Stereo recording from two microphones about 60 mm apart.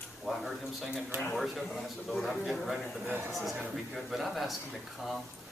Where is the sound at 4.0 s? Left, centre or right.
Centre.